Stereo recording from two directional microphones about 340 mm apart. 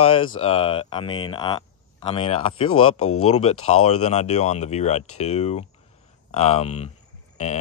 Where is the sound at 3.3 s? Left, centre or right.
Centre.